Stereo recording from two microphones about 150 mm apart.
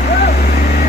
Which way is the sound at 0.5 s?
70° left (ahead or behind).